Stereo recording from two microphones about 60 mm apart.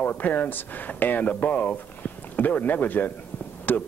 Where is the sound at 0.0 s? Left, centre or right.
Left.